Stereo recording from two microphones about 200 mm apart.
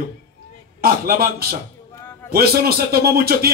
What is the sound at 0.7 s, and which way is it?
A man's voice, 50° right (ahead or behind).